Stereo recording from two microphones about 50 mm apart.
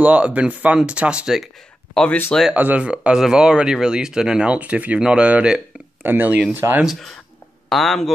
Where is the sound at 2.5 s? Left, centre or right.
Right.